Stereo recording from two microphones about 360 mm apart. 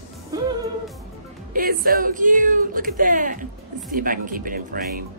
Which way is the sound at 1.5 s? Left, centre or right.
Right.